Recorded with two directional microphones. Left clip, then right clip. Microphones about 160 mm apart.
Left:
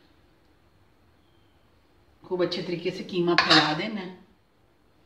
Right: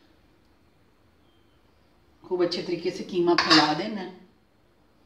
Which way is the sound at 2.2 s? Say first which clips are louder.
Right 1 dB; 30° right (ahead or behind).